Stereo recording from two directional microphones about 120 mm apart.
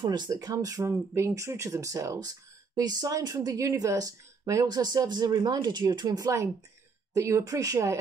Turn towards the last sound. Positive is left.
turn(degrees=-30)  # may be behind; listen again after turning